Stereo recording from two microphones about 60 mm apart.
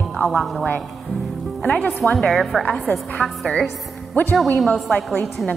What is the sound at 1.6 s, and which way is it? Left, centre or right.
Speech, centre.